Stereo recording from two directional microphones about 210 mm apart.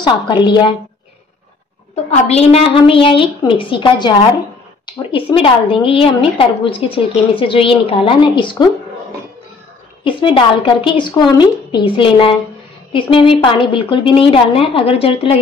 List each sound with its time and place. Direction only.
0.0 s a woman's voice: 20° left (ahead or behind)
2.0 s a woman's voice: 30° left (ahead or behind)
10.0 s a woman's voice: 25° left (ahead or behind)